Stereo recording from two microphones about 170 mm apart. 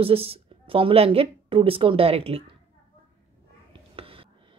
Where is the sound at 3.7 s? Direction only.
30° right (ahead or behind).